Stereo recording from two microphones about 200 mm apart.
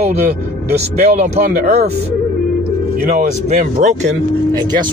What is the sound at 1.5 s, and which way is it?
Speech, 45° right (ahead or behind).